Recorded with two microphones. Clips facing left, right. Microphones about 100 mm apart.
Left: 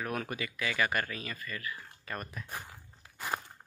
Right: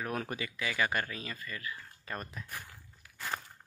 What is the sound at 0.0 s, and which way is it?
Speech, 25° right (ahead or behind).